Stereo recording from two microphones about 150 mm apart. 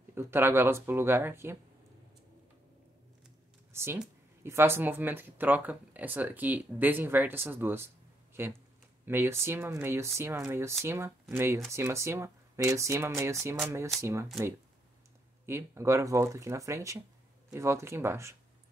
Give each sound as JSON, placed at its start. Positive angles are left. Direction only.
{"t": 0.1, "sound": "speech", "side_deg": -15}
{"t": 3.7, "sound": "speech", "side_deg": -15}
{"t": 15.4, "sound": "speech", "side_deg": -15}